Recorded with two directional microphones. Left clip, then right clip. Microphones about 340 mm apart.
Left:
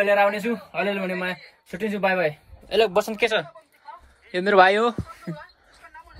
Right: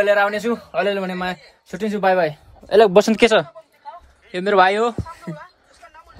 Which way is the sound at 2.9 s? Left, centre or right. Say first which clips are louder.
Right 8 dB; right.